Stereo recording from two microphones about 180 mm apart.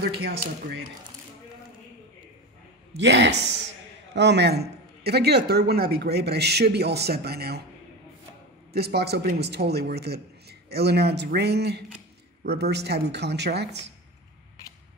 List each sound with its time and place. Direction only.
3.0 s speech: 75° right (ahead or behind)
8.7 s speech: 65° right (ahead or behind)